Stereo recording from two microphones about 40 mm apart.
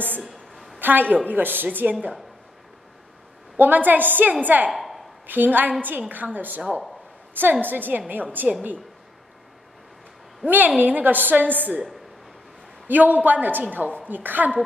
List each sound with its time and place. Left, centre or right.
0.2 s a sound: centre
0.7 s a woman's voice: right
3.5 s a man's voice: right
4.6 s a sound: centre
5.2 s a man's voice: right
7.6 s a man's voice: right
10.4 s a man's voice: right
12.8 s a man's voice: right